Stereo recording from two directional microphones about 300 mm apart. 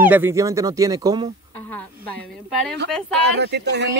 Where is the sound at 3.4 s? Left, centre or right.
Right.